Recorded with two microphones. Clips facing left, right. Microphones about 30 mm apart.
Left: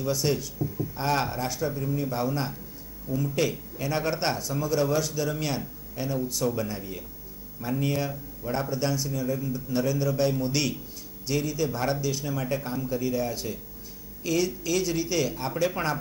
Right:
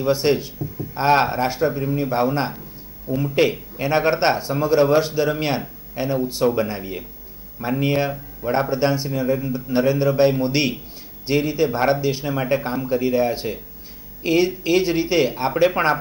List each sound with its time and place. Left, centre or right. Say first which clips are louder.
0.0 s speech: right 8 dB; right